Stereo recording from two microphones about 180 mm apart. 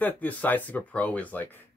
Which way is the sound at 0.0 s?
10° left (ahead or behind).